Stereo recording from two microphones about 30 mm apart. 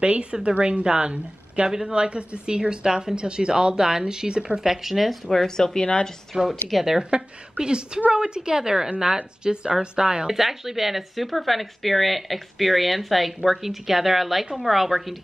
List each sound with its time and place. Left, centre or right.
0.0 s speech: right
4.6 s speech: centre
5.3 s speech: centre
5.8 s a woman's voice: left
6.3 s speech: centre
7.0 s speech: right
10.2 s speech: centre